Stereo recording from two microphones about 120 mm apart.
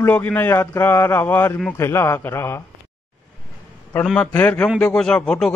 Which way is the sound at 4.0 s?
5° left (ahead or behind).